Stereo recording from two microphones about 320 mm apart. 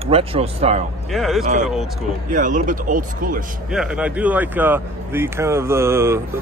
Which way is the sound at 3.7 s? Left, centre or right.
Centre.